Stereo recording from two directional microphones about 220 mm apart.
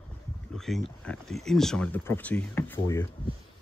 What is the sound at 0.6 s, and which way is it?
Speech, centre (ahead or behind).